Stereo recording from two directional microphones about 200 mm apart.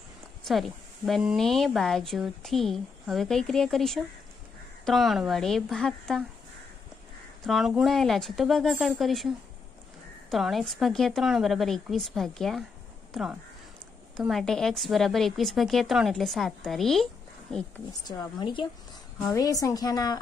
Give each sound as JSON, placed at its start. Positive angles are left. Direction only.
{"t": 0.5, "sound": "speech", "side_deg": 0}
{"t": 7.4, "sound": "speech", "side_deg": 0}
{"t": 10.3, "sound": "speech", "side_deg": 0}
{"t": 18.0, "sound": "a woman's voice", "side_deg": 20}